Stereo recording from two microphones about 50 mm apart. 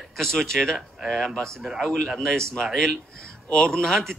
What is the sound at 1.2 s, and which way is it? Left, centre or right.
Speech, centre.